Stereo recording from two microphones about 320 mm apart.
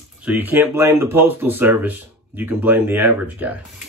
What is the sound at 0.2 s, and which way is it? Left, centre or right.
Speech, centre.